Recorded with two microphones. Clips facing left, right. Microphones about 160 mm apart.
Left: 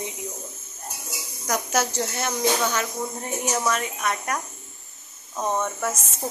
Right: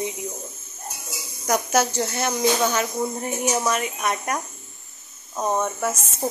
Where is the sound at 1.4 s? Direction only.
10° right (ahead or behind).